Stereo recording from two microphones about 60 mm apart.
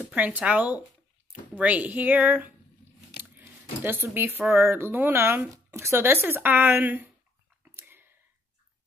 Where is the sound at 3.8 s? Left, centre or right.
Right.